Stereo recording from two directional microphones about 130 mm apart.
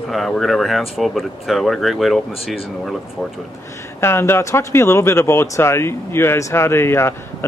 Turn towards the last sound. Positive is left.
turn(degrees=20)  # may be behind; listen again after turning